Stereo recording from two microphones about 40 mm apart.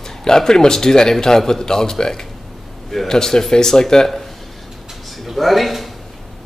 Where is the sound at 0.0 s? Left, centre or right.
Centre.